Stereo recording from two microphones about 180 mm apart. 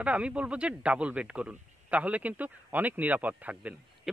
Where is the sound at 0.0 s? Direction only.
5° right (ahead or behind).